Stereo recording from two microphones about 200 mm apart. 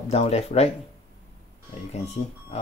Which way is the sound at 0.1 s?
30° left (ahead or behind).